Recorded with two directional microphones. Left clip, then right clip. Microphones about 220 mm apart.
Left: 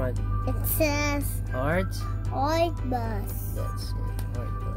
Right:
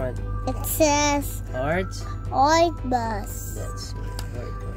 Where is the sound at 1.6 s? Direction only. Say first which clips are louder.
Right 2 dB; centre (ahead or behind).